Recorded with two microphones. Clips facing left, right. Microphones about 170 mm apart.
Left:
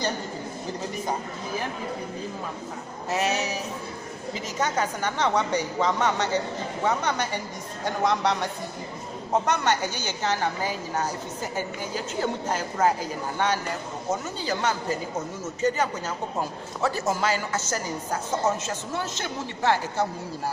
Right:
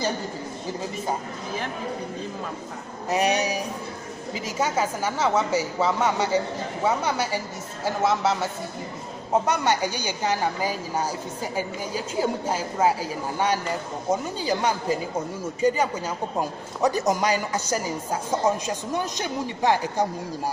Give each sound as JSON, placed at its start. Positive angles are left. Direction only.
{"t": 3.1, "sound": "a woman's voice", "side_deg": -15}